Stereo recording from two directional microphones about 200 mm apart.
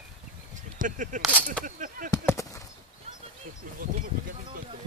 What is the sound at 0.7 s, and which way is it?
Speech, 40° right (ahead or behind).